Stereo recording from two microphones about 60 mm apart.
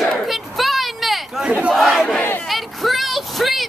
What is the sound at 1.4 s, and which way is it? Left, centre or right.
Battle cry, centre.